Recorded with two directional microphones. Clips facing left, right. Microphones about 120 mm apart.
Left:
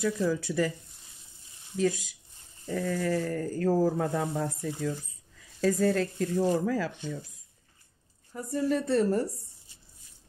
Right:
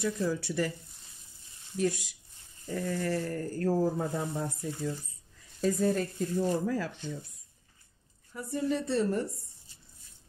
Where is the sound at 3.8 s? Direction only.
85° left.